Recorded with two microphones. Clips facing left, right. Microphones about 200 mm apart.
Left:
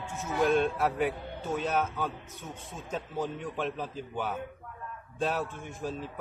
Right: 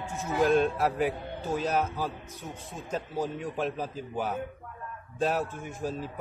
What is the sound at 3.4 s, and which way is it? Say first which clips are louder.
Speech: right 2 dB; centre (ahead or behind).